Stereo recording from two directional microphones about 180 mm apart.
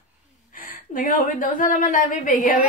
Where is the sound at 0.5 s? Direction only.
50° left (ahead or behind).